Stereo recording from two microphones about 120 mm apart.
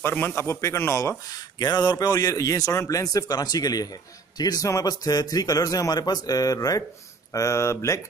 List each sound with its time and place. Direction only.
0.0 s speech: 15° left (ahead or behind)
1.6 s a man's voice: 35° left (ahead or behind)